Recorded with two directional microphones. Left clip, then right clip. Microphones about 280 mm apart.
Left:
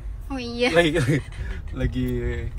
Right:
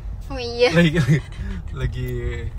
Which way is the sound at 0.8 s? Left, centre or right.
Left.